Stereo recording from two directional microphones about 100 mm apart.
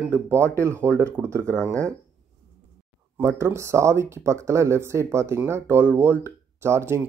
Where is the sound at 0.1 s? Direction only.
25° right (ahead or behind).